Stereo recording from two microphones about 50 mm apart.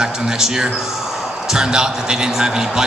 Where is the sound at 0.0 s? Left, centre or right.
Centre.